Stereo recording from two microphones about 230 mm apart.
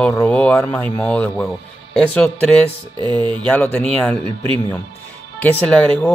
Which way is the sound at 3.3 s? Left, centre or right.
Centre.